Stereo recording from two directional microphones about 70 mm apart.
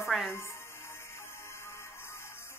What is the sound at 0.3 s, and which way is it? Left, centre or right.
Music, left.